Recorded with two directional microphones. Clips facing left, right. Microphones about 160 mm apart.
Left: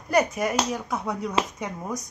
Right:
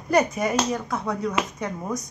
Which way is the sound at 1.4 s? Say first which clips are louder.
Left 1 dB; 30° left (ahead or behind).